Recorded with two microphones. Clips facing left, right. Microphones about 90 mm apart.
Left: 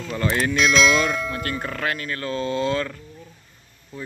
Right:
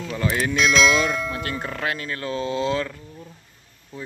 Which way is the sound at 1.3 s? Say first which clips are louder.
Left 1 dB; 15° right (ahead or behind).